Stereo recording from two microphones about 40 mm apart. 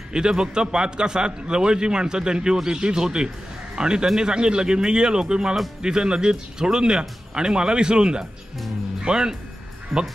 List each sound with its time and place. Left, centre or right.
0.1 s a man's voice: centre
9.9 s speech: centre